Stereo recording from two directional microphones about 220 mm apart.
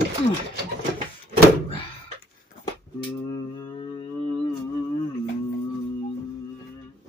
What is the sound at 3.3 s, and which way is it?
Mantra, 20° left (ahead or behind).